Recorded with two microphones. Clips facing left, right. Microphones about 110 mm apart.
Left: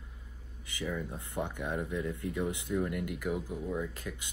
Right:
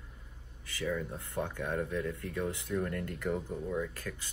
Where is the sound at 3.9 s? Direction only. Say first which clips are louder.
Even; 20° left (ahead or behind).